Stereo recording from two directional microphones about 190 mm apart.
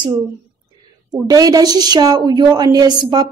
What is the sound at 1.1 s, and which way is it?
A woman's voice, 20° right (ahead or behind).